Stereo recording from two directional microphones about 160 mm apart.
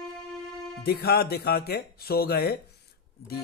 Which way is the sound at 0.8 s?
85° left.